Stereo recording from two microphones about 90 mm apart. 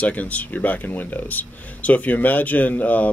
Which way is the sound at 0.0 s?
15° left (ahead or behind).